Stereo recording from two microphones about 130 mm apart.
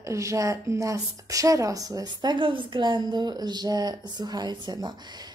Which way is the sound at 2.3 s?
40° right (ahead or behind).